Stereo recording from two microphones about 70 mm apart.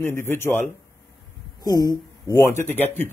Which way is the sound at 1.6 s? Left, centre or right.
Left.